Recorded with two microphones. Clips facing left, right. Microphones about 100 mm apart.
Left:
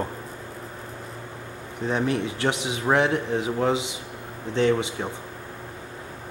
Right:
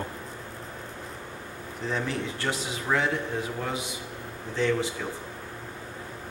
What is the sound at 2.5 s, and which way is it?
Speech, 90° left.